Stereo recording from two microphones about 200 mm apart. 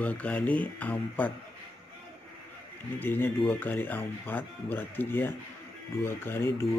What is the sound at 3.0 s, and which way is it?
Speech, 10° left (ahead or behind).